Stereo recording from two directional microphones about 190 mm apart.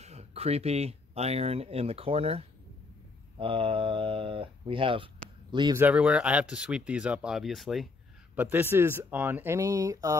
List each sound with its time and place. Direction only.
0.0 s speech: 35° right (ahead or behind)
5.8 s speech: 10° right (ahead or behind)